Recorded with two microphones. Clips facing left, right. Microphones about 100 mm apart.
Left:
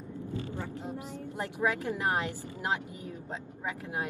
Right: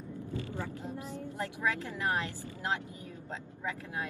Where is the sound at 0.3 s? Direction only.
20° left (ahead or behind).